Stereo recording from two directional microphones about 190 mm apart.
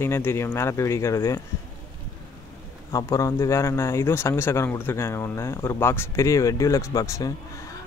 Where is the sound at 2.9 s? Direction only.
15° left (ahead or behind).